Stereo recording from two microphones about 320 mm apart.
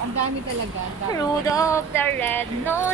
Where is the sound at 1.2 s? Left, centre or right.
Centre.